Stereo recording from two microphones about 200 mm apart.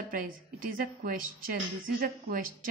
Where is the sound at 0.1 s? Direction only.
45° right (ahead or behind).